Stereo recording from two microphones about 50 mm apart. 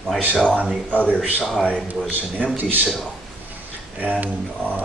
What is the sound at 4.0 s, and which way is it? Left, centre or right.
Speech, right.